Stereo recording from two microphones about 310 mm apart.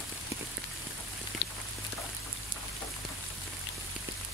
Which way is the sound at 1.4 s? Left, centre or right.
Left.